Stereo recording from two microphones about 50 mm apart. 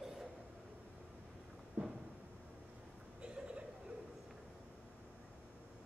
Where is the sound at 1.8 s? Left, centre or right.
Right.